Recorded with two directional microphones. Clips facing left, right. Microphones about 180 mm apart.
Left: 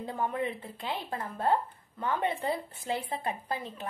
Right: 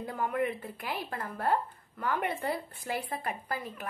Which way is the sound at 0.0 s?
25° left (ahead or behind).